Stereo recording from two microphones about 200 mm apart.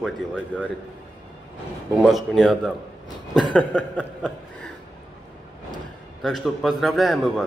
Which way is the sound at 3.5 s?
5° left (ahead or behind).